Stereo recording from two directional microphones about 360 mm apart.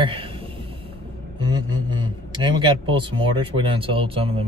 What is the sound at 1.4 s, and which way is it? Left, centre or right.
A man's voice, centre.